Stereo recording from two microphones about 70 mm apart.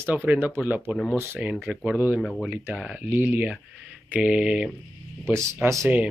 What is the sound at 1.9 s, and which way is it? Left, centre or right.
Speech, centre.